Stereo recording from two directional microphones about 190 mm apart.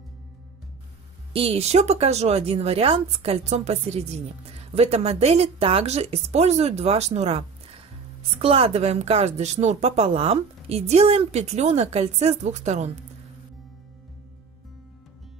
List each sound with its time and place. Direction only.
1.3 s speech: 30° right (ahead or behind)